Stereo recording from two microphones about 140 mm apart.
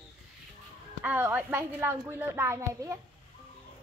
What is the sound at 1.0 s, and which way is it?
A child's voice, 15° right (ahead or behind).